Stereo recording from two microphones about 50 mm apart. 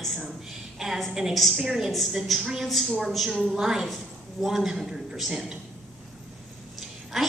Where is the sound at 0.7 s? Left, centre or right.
Centre.